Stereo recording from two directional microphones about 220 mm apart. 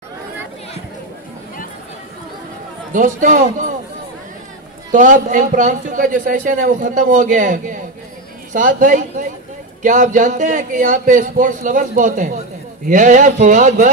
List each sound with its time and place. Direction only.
2.9 s a man's voice: 35° right (ahead or behind)
4.9 s speech: 35° right (ahead or behind)